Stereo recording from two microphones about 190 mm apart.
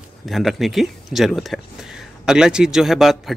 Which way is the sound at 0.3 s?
Centre (ahead or behind).